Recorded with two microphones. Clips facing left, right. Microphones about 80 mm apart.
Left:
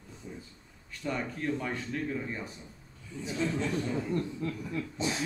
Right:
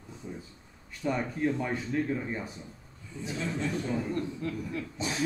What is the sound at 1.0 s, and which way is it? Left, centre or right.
Speech, centre.